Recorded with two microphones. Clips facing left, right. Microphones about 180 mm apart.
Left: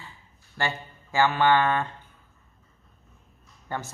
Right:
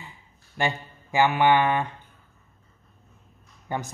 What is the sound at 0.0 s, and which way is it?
Mantra, 15° right (ahead or behind).